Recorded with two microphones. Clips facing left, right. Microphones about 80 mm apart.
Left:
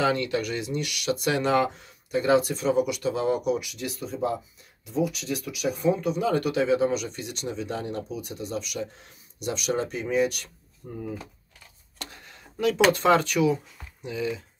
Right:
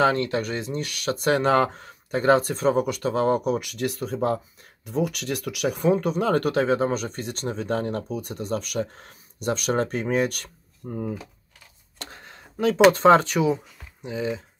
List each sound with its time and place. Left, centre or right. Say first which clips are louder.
0.0 s speech: right 3 dB; right
12.0 s a sound: right 1 dB; right
12.9 s speech: right 5 dB; right